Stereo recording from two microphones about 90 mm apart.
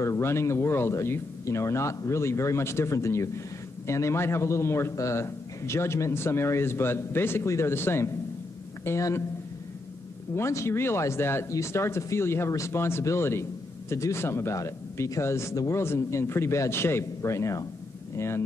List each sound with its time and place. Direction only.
0.0 s a man's voice: 30° left (ahead or behind)
10.3 s a man's voice: 30° left (ahead or behind)